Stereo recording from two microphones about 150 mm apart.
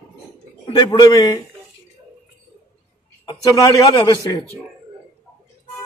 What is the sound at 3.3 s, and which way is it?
A man's voice, 25° left (ahead or behind).